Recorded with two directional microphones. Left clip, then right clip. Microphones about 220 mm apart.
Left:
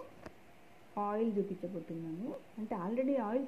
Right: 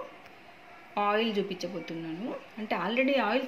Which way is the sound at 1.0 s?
15° right (ahead or behind).